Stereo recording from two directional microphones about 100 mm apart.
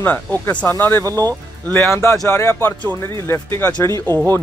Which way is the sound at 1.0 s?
35° right (ahead or behind).